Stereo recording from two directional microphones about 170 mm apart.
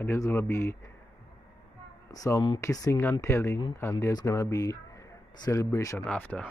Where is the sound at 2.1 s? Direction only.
20° left (ahead or behind).